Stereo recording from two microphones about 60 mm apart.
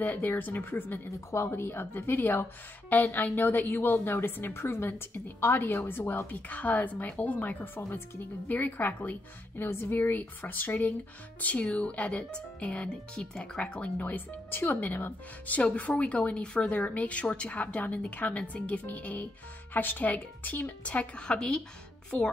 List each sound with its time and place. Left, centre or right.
0.0 s a woman's voice: left
1.0 s a woman's voice: left
9.6 s speech: left; by 21.5 s centre